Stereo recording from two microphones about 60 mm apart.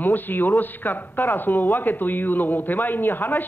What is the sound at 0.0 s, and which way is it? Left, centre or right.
A woman's voice, left.